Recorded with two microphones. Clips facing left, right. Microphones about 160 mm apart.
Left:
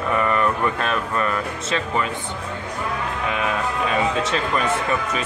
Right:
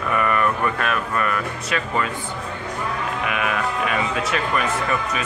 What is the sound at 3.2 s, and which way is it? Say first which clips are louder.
Speech: even; 25° left (ahead or behind).